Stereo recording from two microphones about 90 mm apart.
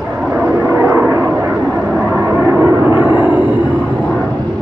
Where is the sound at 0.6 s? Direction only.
25° right (ahead or behind).